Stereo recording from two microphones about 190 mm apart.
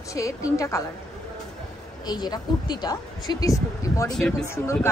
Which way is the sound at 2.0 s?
20° left (ahead or behind).